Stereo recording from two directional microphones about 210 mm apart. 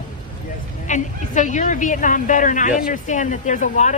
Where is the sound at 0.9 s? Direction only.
35° left (ahead or behind).